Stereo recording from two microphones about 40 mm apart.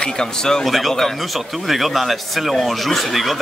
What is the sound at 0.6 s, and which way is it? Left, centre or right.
Speech, centre.